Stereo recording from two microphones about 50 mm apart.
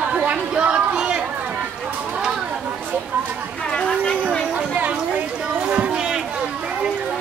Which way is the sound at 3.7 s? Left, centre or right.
Centre.